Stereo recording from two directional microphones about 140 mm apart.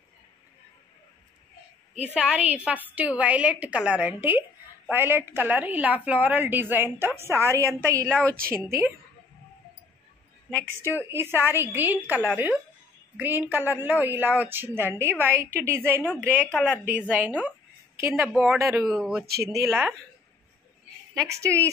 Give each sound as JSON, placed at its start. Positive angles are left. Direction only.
{"t": 2.1, "sound": "a woman's voice", "side_deg": -5}
{"t": 7.5, "sound": "a woman's voice", "side_deg": 15}
{"t": 8.5, "sound": "a woman's voice", "side_deg": -20}
{"t": 10.7, "sound": "a woman's voice", "side_deg": -15}
{"t": 16.2, "sound": "a woman's voice", "side_deg": 10}
{"t": 16.8, "sound": "a woman's voice", "side_deg": -10}
{"t": 17.4, "sound": "a sound", "side_deg": -15}
{"t": 18.6, "sound": "speech", "side_deg": 0}
{"t": 19.7, "sound": "a woman's voice", "side_deg": -15}
{"t": 21.3, "sound": "a woman's voice", "side_deg": -20}